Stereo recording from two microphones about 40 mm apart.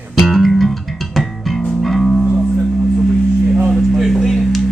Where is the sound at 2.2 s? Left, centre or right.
Centre.